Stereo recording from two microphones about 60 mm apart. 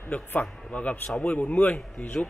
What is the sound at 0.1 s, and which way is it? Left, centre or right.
Speech, left.